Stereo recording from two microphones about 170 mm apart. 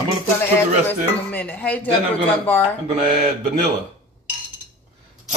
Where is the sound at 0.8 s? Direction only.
10° left (ahead or behind).